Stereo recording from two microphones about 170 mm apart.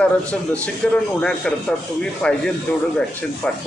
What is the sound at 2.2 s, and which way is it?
Speech, 5° left (ahead or behind).